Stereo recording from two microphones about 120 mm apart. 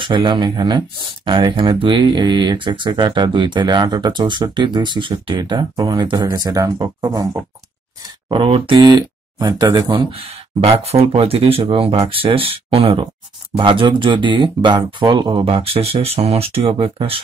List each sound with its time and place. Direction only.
0.0 s speech: 45° right (ahead or behind)
8.3 s speech: 45° right (ahead or behind)